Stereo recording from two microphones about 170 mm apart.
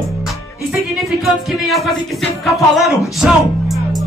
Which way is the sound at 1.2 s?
Centre (ahead or behind).